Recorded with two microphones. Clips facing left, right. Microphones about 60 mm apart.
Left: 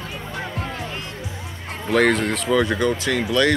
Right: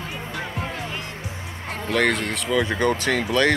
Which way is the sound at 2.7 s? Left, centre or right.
Right.